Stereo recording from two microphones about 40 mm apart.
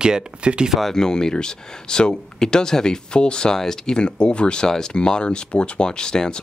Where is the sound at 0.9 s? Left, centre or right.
Centre.